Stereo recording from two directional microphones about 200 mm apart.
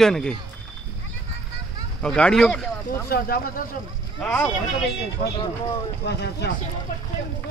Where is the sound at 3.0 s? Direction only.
50° left (ahead or behind).